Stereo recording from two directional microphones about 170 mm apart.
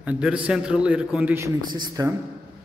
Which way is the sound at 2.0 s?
20° right (ahead or behind).